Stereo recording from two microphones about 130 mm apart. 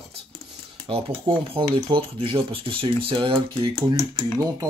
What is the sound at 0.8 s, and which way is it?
Speech, 45° right (ahead or behind).